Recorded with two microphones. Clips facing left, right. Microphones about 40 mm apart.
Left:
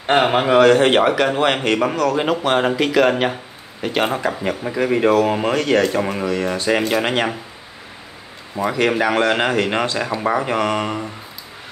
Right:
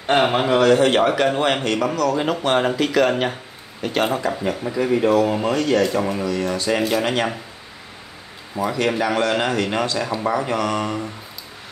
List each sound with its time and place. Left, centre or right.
0.0 s speech: centre
0.7 s speech: left
1.1 s speech: centre
1.6 s speech: left
2.2 s speech: centre
4.4 s speech: left
5.9 s speech: left
8.5 s speech: left